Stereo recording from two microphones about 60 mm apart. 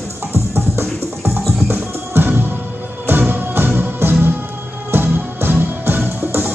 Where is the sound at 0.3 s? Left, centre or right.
Right.